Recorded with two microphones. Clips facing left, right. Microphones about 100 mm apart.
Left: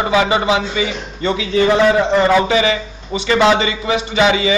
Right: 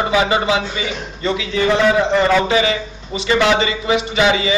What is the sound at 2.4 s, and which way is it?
A man's voice, 30° left (ahead or behind).